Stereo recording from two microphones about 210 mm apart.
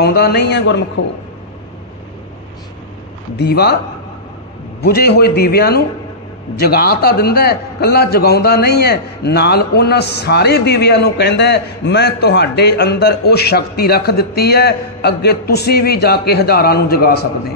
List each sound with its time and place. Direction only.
0.0 s a man's voice: 50° left (ahead or behind)
3.3 s a man's voice: 50° left (ahead or behind)
4.8 s a man's voice: 50° left (ahead or behind)